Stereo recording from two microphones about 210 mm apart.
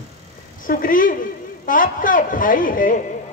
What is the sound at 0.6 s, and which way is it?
A woman's voice, 40° left (ahead or behind).